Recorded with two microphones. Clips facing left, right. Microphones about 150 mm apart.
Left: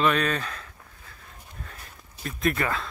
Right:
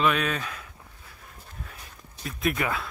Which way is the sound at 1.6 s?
5° right (ahead or behind).